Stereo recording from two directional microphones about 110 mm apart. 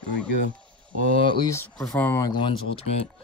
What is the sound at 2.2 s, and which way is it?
Speech, 40° left (ahead or behind).